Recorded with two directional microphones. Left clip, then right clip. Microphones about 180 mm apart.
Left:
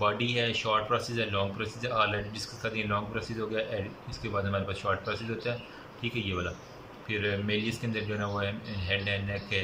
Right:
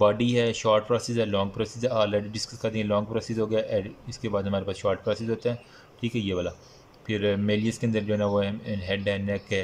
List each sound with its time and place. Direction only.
0.0 s speech: 35° right (ahead or behind)